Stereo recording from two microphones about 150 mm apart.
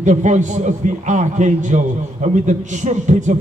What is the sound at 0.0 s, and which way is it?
A man's voice, 55° right (ahead or behind).